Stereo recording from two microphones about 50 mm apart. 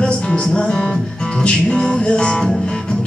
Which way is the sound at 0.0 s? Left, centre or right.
Centre.